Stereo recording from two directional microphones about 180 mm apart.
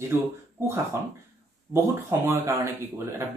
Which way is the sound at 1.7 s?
15° right (ahead or behind).